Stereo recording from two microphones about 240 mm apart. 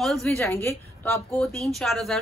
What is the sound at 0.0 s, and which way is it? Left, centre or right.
A woman's voice, centre.